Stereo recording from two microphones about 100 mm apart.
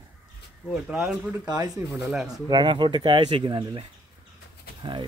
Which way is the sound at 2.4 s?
50° right (ahead or behind).